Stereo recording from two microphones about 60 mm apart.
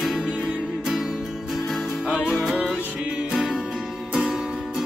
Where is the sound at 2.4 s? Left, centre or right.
Centre.